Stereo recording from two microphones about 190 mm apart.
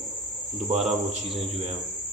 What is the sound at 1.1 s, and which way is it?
Speech, 35° right (ahead or behind).